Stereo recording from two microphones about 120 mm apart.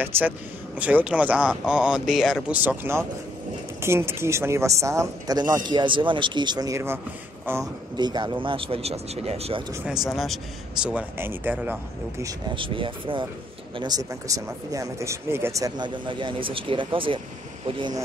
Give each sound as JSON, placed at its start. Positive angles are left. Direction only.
{"t": 0.0, "sound": "speech", "side_deg": -15}
{"t": 8.0, "sound": "speech", "side_deg": -40}
{"t": 10.0, "sound": "a man's voice", "side_deg": 0}
{"t": 12.5, "sound": "speech", "side_deg": -45}
{"t": 13.7, "sound": "speech", "side_deg": -35}
{"t": 15.8, "sound": "speech", "side_deg": -40}